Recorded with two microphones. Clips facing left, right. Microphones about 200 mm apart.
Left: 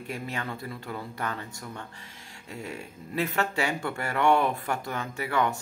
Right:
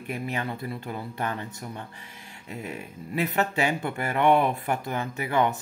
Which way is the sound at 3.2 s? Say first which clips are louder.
Right 2 dB; 15° right (ahead or behind).